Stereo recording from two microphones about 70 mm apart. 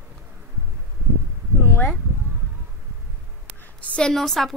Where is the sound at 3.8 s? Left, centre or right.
Centre.